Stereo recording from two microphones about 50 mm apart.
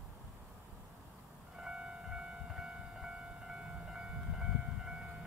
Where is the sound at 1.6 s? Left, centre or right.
Centre.